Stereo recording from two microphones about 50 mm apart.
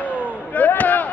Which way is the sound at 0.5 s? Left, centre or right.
Left.